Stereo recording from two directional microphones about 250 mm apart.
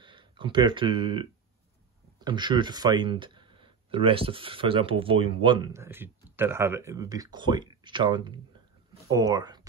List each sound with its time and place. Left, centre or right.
0.0 s speech: centre